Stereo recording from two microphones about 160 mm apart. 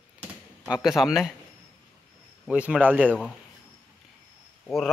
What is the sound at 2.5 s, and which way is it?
Speech, 10° right (ahead or behind).